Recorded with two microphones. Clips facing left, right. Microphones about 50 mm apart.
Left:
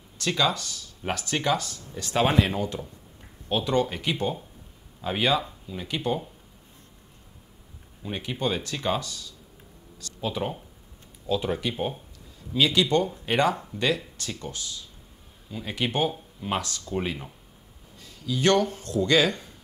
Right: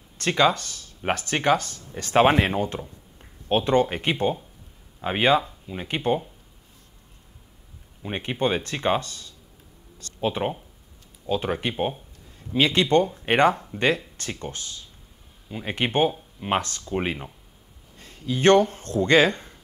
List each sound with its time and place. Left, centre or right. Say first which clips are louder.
0.2 s speech: right 5 dB; right
8.0 s speech: right 4 dB; right